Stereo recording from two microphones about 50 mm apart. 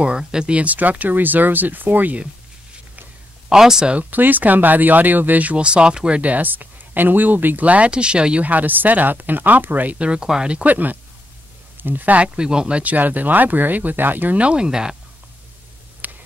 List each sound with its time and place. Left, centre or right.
0.2 s speech: centre; by 2.1 s right
3.4 s speech: centre
3.9 s speech: right
8.5 s speech: right
9.9 s speech: right
10.6 s speech: right
12.2 s speech: centre
12.8 s speech: right
14.4 s speech: centre
16.0 s a sound: right